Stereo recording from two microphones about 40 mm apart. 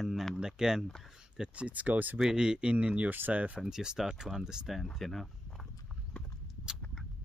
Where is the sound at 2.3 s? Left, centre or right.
Right.